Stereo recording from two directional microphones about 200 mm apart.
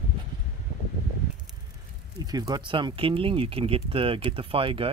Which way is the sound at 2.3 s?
20° right (ahead or behind).